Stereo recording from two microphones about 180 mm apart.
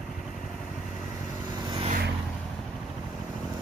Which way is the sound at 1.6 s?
25° right (ahead or behind).